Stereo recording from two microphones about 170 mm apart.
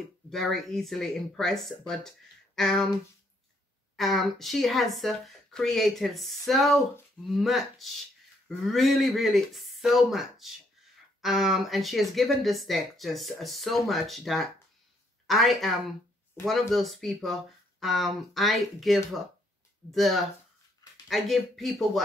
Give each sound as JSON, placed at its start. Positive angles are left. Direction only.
{"t": 0.3, "sound": "speech", "side_deg": 0}
{"t": 3.9, "sound": "speech", "side_deg": 0}